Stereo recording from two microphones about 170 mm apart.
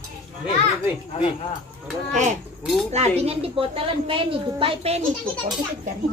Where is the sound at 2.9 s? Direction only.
40° right (ahead or behind).